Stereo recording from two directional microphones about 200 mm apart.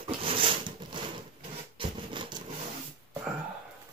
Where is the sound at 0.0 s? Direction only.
25° right (ahead or behind).